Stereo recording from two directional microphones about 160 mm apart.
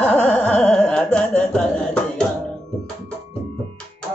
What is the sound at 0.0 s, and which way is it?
Carnatic music, 10° left (ahead or behind).